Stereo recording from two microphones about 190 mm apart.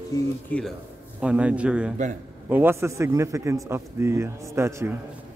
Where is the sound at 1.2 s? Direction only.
5° right (ahead or behind).